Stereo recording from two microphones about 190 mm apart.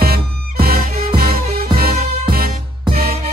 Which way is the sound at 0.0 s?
55° right (ahead or behind).